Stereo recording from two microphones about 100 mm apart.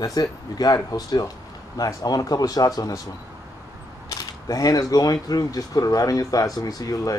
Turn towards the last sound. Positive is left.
turn(degrees=35)  # may be behind; listen again after turning